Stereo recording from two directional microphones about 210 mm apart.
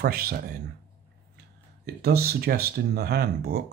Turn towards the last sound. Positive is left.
turn(degrees=-50)  # may be behind; listen again after turning